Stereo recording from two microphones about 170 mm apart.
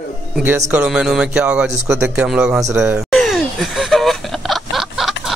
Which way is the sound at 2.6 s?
20° right (ahead or behind).